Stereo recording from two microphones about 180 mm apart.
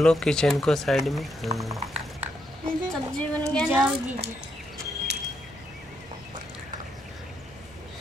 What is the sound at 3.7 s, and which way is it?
Speech, 10° right (ahead or behind).